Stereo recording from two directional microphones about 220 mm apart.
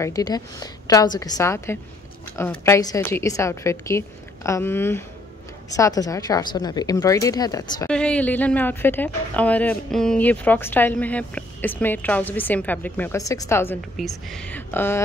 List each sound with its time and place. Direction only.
0.0 s a woman's voice: 15° left (ahead or behind)
7.9 s a woman's voice: 5° left (ahead or behind)